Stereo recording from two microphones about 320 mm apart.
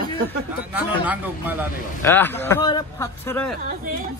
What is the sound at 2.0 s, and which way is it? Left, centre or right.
A man's voice, centre.